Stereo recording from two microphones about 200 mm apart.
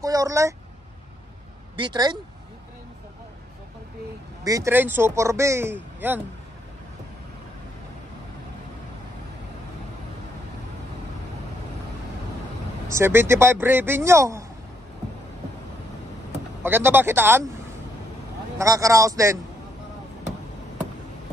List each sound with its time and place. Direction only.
0.0 s speech: 15° right (ahead or behind)
1.8 s speech: 20° right (ahead or behind)
4.5 s speech: 15° right (ahead or behind)
12.8 s speech: 15° right (ahead or behind)
16.6 s speech: 10° right (ahead or behind)
18.6 s speech: 15° right (ahead or behind)